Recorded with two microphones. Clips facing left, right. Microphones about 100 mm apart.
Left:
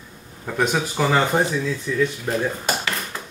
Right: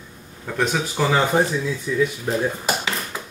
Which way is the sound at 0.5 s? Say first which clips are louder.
Left 1 dB; 5° left (ahead or behind).